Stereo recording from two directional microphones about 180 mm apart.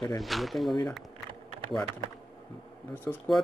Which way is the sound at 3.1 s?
15° left (ahead or behind).